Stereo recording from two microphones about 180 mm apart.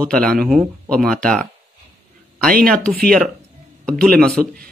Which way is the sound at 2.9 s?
55° right (ahead or behind).